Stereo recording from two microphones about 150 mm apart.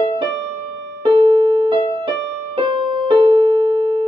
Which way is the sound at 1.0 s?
35° right (ahead or behind).